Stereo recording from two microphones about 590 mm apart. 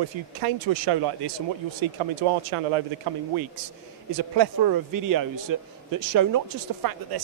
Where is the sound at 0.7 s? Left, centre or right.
Right.